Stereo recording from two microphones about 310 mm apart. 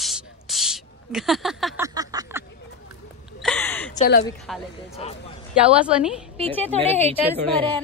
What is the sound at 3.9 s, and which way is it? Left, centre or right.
Speech, left.